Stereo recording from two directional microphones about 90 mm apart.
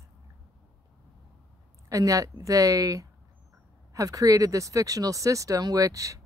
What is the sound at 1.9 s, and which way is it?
Speech, 40° right (ahead or behind).